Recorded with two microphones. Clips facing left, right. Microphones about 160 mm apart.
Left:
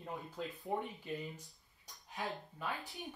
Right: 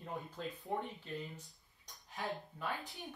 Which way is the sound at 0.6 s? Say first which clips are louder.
Left 2 dB; 15° left (ahead or behind).